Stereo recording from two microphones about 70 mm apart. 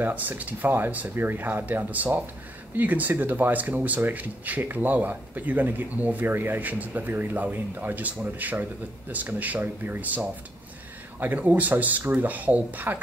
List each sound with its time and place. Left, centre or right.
0.0 s speech: right